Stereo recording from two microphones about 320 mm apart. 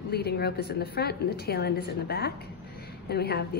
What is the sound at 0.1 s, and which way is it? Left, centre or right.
A woman's voice, left.